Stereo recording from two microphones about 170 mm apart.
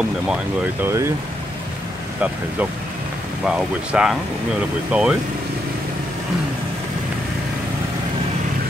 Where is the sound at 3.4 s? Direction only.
5° right (ahead or behind).